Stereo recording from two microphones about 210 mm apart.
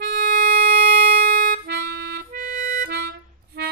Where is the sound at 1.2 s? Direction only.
50° right (ahead or behind).